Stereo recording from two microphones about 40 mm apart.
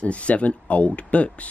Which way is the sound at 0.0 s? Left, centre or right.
Left.